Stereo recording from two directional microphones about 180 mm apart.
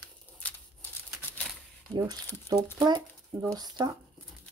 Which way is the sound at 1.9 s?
20° right (ahead or behind).